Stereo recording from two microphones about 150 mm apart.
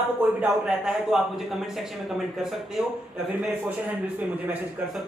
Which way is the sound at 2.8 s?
5° right (ahead or behind).